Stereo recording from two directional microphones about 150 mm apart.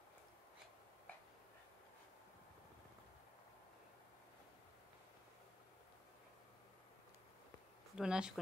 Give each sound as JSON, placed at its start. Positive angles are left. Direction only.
{"t": 7.9, "sound": "speech", "side_deg": -5}